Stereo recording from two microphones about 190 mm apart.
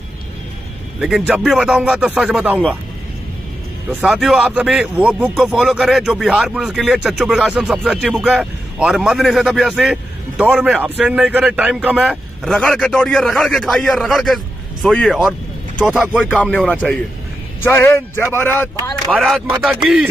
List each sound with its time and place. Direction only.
0.9 s speech: centre (ahead or behind)
3.9 s speech: centre (ahead or behind)